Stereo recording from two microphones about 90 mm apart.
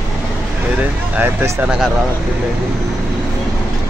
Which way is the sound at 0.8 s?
20° right (ahead or behind).